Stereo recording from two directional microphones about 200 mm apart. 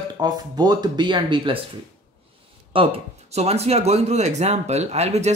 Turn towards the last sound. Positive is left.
turn(degrees=-35)  # may be behind; listen again after turning